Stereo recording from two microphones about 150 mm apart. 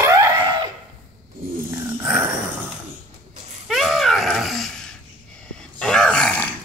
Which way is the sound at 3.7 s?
Centre (ahead or behind).